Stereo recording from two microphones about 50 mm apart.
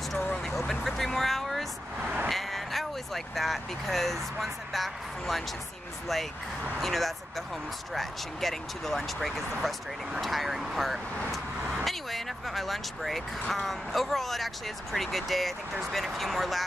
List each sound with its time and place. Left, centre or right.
0.2 s vehicle: left
0.6 s vehicle: centre
2.0 s vehicle: right
2.2 s speech: centre
6.8 s speech: centre